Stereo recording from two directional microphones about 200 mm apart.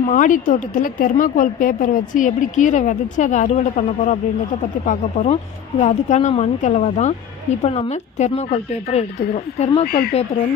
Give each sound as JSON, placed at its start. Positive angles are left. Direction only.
{"t": 0.1, "sound": "speech", "side_deg": 40}
{"t": 9.8, "sound": "speech", "side_deg": 50}